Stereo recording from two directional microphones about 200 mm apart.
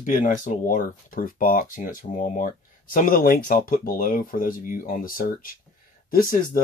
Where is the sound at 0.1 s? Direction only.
40° left (ahead or behind).